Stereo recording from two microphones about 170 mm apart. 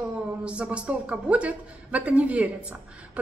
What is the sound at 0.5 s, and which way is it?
A woman's voice, 5° right (ahead or behind).